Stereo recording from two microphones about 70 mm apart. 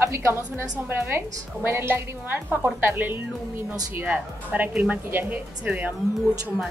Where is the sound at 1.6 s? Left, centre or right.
Right.